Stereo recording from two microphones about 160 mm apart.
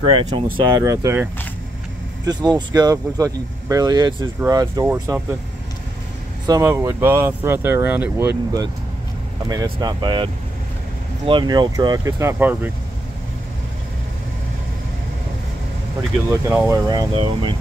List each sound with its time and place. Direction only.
0.0 s speech: 35° right (ahead or behind)
0.6 s speech: 20° right (ahead or behind)
6.4 s speech: 20° right (ahead or behind)
9.5 s speech: 25° right (ahead or behind)
16.3 s speech: 15° right (ahead or behind); by 17.6 s 30° right (ahead or behind)